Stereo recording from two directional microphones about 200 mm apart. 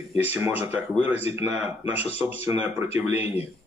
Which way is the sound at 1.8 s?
30° left (ahead or behind).